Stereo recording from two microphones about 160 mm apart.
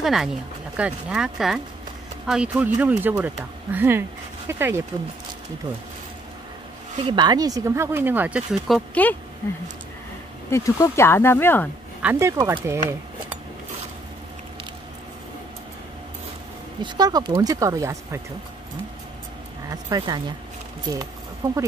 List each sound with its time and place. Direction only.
0.0 s speech: centre (ahead or behind)
7.0 s speech: 30° right (ahead or behind); by 9.1 s 5° left (ahead or behind)
10.5 s speech: 20° left (ahead or behind)
12.0 s speech: 15° right (ahead or behind)
16.8 s speech: 25° right (ahead or behind)
19.7 s speech: 25° right (ahead or behind)
21.4 s speech: 20° right (ahead or behind)